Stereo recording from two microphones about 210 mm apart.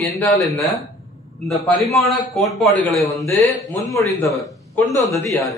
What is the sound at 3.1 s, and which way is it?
Speech, 10° left (ahead or behind).